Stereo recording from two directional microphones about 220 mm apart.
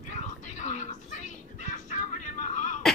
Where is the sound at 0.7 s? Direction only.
35° left (ahead or behind).